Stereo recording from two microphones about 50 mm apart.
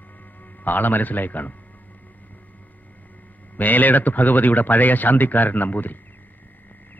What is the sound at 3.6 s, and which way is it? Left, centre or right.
Speech, left.